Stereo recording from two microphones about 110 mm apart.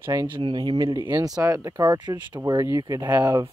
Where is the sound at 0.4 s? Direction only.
45° right (ahead or behind).